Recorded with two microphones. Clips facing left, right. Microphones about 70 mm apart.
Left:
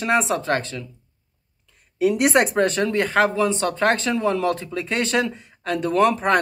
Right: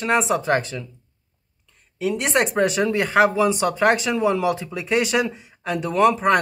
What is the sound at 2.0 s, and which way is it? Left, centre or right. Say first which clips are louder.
Speech: left 3 dB; centre.